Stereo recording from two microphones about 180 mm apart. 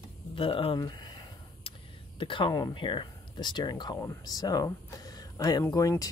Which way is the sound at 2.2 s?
25° left (ahead or behind).